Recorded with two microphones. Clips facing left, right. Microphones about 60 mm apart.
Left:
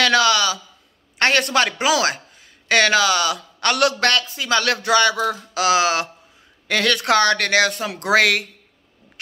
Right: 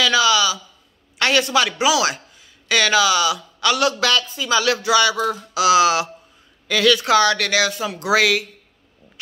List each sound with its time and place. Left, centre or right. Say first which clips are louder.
0.0 s speech: even; left
5.5 s a sound: right 4 dB; left
6.7 s speech: right 2 dB; left